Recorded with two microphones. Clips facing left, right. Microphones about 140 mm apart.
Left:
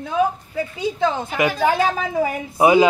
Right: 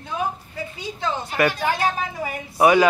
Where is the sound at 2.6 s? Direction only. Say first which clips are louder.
Left 2 dB; 20° left (ahead or behind).